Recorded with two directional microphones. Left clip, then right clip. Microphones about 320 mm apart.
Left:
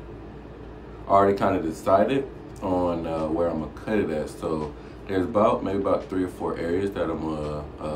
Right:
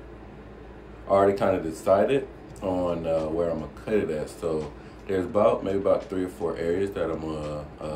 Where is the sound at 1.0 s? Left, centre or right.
Centre.